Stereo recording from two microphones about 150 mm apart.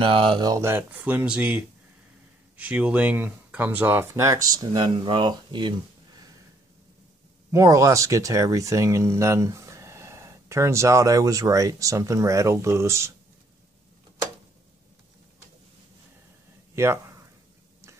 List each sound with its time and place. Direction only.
0.0 s speech: 35° right (ahead or behind)
7.5 s speech: 20° right (ahead or behind)
16.7 s speech: 20° right (ahead or behind)